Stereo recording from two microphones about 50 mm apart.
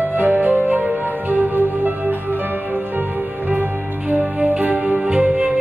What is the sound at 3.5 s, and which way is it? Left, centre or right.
Music, right.